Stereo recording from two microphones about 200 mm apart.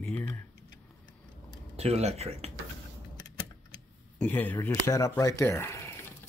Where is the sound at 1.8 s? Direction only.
30° right (ahead or behind).